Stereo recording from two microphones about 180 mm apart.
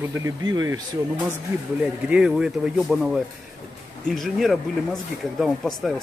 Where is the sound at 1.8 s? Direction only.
5° right (ahead or behind).